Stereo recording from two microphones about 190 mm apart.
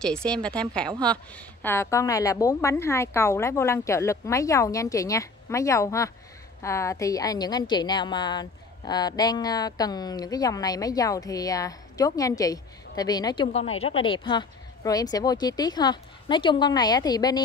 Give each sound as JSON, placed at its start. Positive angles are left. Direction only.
{"t": 0.0, "sound": "a woman's voice", "side_deg": 5}
{"t": 13.5, "sound": "a woman's voice", "side_deg": 35}